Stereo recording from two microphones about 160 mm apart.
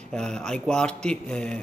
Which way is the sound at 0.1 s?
5° left (ahead or behind).